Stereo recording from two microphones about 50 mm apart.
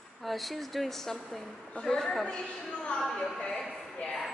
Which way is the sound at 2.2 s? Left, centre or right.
Left.